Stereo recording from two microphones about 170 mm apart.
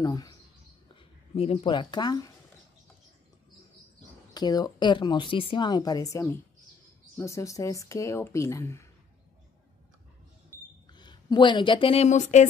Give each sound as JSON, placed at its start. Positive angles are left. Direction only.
{"t": 0.0, "sound": "a woman's voice", "side_deg": 20}
{"t": 1.3, "sound": "speech", "side_deg": 35}
{"t": 1.7, "sound": "a woman's voice", "side_deg": 25}
{"t": 4.3, "sound": "a woman's voice", "side_deg": 25}
{"t": 10.9, "sound": "speech", "side_deg": 25}